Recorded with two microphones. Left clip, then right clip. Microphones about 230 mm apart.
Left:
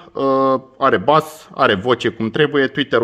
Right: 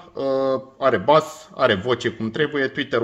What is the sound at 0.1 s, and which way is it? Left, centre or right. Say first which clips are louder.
A man's voice: left 6 dB; left.